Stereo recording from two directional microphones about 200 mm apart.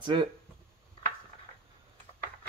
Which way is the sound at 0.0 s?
25° right (ahead or behind).